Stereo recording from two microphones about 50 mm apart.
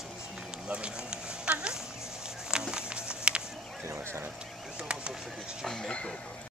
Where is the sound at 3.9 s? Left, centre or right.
Right.